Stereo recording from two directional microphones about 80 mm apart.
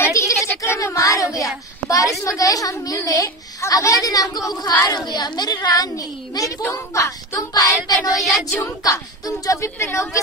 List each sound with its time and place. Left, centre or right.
0.0 s a sound: left
1.9 s a child's voice: left
8.2 s child singing: centre
8.6 s speech: left